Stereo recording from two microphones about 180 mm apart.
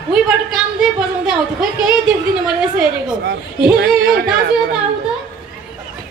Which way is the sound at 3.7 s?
60° right (ahead or behind).